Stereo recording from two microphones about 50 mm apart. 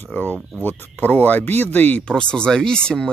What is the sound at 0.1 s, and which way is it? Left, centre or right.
Speech, left.